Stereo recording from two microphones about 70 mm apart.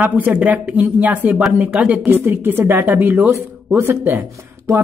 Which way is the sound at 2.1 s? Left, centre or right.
Right.